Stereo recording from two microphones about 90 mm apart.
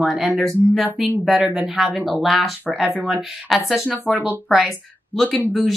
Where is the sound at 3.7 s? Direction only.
5° right (ahead or behind).